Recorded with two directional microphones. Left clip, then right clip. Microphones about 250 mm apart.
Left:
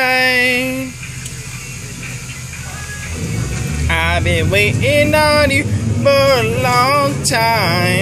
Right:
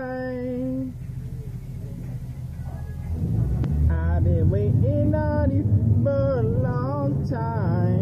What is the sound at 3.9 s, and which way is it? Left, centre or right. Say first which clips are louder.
Speech: left 18 dB; left.